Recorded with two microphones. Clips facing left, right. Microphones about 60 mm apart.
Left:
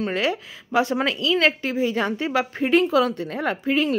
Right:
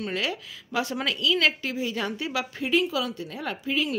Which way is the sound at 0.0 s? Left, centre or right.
Left.